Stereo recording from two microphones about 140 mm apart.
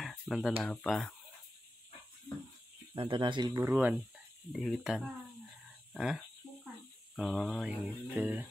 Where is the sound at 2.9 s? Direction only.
35° right (ahead or behind).